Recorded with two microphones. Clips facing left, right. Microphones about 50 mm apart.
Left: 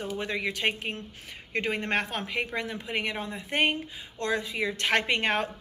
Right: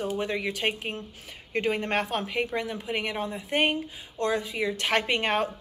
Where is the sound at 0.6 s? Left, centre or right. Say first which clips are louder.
Even; centre.